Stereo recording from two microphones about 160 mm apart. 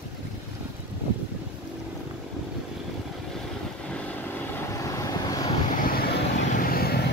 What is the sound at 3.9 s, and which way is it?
Vehicle, 10° left (ahead or behind).